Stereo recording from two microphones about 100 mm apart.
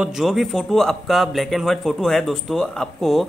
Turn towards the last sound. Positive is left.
turn(degrees=0)  # may be behind; listen again after turning